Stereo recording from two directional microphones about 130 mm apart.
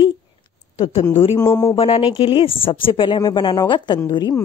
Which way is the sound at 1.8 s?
50° left (ahead or behind).